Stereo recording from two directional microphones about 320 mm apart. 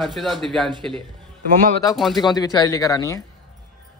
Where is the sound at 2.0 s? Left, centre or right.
Centre.